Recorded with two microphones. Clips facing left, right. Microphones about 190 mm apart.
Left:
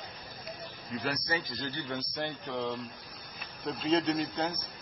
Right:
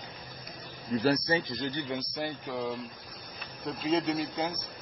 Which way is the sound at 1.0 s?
30° right (ahead or behind).